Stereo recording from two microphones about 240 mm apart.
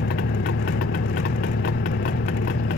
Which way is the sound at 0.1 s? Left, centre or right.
Left.